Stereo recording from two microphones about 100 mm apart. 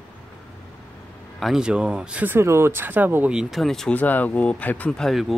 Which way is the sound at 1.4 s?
5° right (ahead or behind).